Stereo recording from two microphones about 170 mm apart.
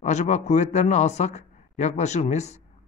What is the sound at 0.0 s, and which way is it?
A man's voice, 45° left (ahead or behind).